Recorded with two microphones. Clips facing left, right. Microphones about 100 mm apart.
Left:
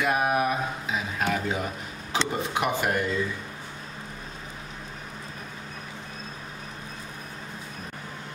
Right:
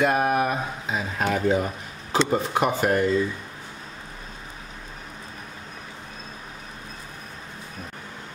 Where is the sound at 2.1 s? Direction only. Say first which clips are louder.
Right 5 dB; 40° right (ahead or behind).